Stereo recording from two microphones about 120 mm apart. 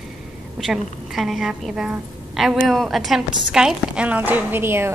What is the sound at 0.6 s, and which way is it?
A woman's voice, centre (ahead or behind).